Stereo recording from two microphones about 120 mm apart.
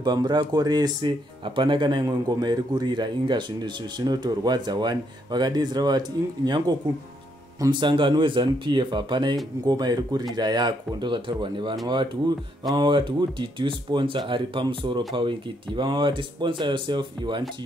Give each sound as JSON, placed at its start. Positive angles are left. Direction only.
{"t": 0.0, "sound": "speech", "side_deg": -35}